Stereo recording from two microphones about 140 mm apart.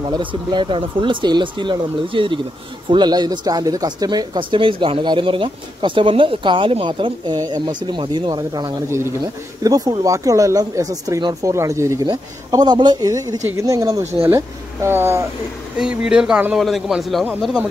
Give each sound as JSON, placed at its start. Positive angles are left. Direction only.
{"t": 0.1, "sound": "speech", "side_deg": -35}
{"t": 15.8, "sound": "speech", "side_deg": -5}